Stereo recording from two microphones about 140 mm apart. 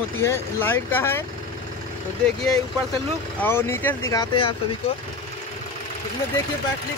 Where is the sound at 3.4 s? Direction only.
15° left (ahead or behind).